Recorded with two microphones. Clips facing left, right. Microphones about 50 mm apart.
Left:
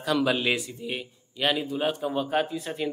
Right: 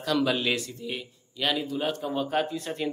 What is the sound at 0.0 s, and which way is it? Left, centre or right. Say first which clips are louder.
A man's voice: left 1 dB; centre.